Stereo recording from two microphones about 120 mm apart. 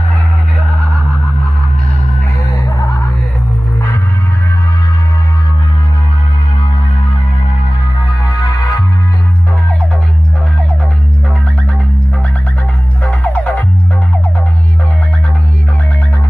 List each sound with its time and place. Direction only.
8.3 s music: 30° left (ahead or behind)
13.0 s music: 10° left (ahead or behind)